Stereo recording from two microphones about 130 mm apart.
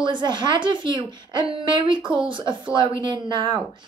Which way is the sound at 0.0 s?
35° right (ahead or behind).